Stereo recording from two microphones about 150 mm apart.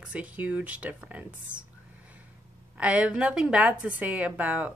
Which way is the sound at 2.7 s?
10° right (ahead or behind).